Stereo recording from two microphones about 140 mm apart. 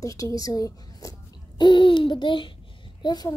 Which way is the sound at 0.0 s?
25° left (ahead or behind).